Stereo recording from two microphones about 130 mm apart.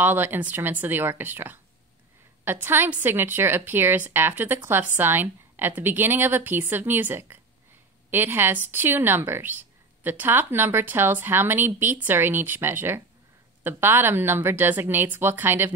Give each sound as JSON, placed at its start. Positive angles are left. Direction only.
{"t": 0.0, "sound": "a woman's voice", "side_deg": -15}